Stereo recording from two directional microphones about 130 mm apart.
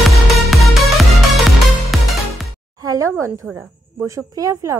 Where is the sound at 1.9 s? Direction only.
Centre (ahead or behind).